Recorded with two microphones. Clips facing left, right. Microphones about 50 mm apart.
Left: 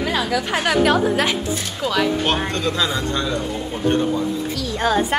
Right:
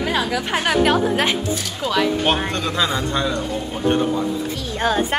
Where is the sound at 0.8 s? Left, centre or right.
Right.